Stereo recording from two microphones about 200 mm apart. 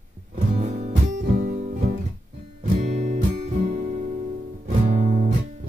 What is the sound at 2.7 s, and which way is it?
Music, 35° right (ahead or behind).